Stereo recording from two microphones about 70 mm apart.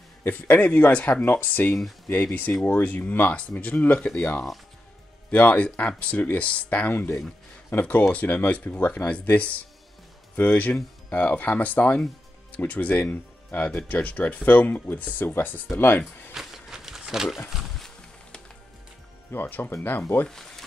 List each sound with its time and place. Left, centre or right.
0.2 s speech: left
8.1 s speech: left
16.3 s a sound: centre
19.3 s speech: left
20.2 s speech: centre